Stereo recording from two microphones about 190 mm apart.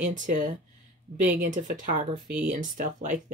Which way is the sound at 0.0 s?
45° right (ahead or behind).